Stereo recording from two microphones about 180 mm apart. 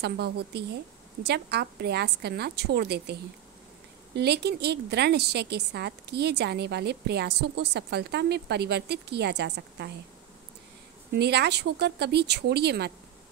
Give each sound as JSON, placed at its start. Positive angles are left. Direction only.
{"t": 0.0, "sound": "a woman's voice", "side_deg": -65}
{"t": 11.1, "sound": "a woman's voice", "side_deg": -65}